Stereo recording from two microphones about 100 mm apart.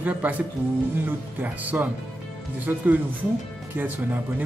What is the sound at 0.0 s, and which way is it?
Speech, 15° right (ahead or behind).